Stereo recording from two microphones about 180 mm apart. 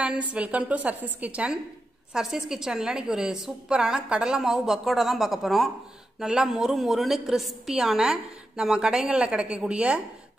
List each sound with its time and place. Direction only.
0.0 s a woman's voice: 5° right (ahead or behind)